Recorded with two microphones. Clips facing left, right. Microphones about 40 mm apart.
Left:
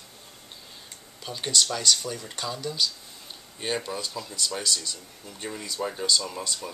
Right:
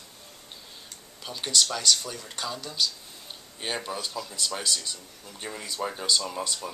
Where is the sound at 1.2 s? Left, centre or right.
Centre.